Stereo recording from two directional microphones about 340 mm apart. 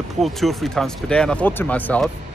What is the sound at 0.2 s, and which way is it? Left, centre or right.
Speech, centre.